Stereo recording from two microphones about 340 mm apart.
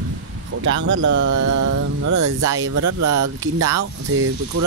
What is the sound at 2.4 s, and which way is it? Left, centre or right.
Speech, right.